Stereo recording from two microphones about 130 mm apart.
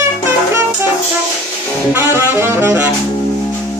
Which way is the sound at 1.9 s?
15° right (ahead or behind).